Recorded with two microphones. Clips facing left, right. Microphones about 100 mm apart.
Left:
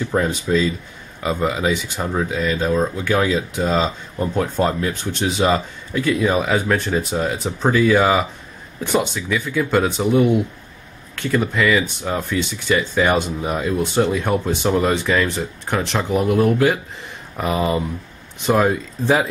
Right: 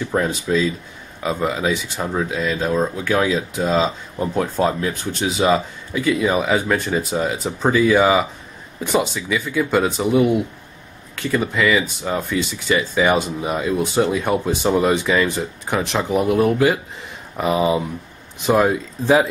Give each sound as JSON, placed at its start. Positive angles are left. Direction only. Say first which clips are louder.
{"t": 0.1, "sound": "speech", "louder": "even", "side_deg": 0}